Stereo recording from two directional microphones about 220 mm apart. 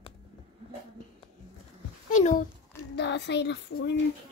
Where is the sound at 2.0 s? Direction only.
35° left (ahead or behind).